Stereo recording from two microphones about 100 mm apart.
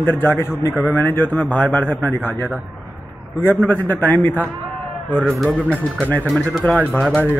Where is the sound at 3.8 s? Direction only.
20° left (ahead or behind).